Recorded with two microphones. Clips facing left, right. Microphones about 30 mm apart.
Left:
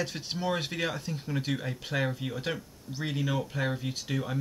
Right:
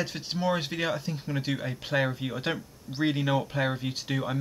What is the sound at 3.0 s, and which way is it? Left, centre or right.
Speech, right.